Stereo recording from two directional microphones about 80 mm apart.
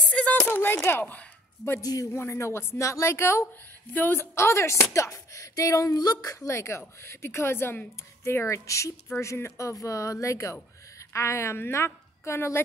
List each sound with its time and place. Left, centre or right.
0.1 s speech: centre
1.8 s speech: left
2.1 s speech: left
3.9 s speech: left
6.4 s speech: left